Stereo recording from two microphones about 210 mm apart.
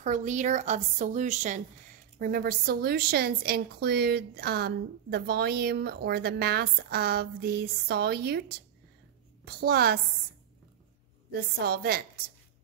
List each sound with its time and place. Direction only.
0.0 s a woman's voice: 35° right (ahead or behind)
11.3 s a woman's voice: 50° right (ahead or behind)